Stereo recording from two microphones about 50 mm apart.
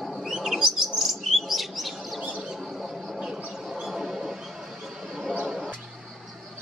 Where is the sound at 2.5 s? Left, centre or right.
Centre.